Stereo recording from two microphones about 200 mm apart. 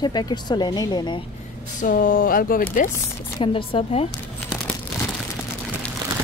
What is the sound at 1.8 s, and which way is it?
Speech, 45° left (ahead or behind).